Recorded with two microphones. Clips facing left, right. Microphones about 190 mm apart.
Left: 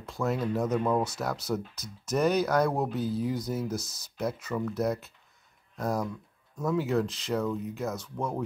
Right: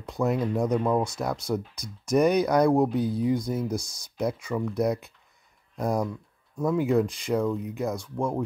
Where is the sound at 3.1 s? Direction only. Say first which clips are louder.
Right 5 dB; 5° left (ahead or behind).